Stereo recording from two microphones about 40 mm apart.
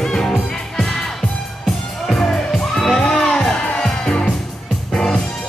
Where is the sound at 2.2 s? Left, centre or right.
Centre.